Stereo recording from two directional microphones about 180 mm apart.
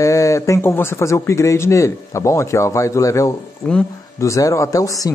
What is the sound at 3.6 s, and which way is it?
Speech, 5° left (ahead or behind).